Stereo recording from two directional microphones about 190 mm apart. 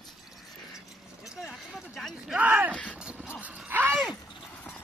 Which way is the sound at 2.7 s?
5° left (ahead or behind).